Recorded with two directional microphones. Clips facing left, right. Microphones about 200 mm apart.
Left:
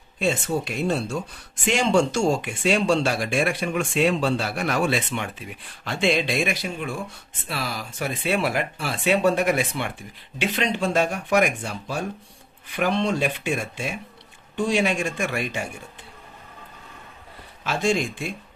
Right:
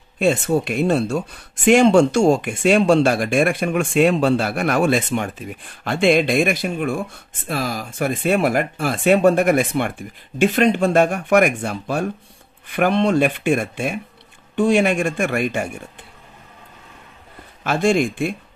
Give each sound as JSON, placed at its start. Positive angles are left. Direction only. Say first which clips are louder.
{"t": 0.2, "sound": "speech", "louder": "right 6 dB", "side_deg": -55}
{"t": 17.6, "sound": "speech", "louder": "right 6 dB", "side_deg": -55}